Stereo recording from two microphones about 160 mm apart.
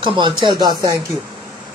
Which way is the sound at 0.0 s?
30° right (ahead or behind).